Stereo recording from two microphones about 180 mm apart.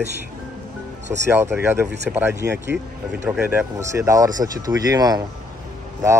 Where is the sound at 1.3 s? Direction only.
10° right (ahead or behind).